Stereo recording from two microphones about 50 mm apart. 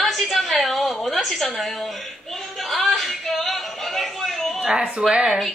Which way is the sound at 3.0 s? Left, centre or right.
Centre.